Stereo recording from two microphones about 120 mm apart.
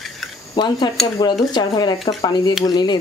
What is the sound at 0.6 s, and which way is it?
Speech, 35° left (ahead or behind).